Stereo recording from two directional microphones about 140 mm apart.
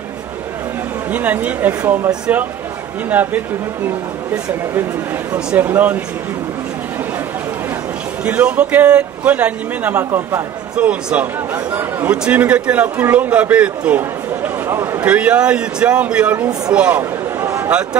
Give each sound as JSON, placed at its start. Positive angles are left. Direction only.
{"t": 1.1, "sound": "a man's voice", "side_deg": -10}
{"t": 3.1, "sound": "a man's voice", "side_deg": -10}
{"t": 5.3, "sound": "a man's voice", "side_deg": -10}
{"t": 8.2, "sound": "a man's voice", "side_deg": -10}
{"t": 15.0, "sound": "a man's voice", "side_deg": -10}
{"t": 16.7, "sound": "a sound", "side_deg": -10}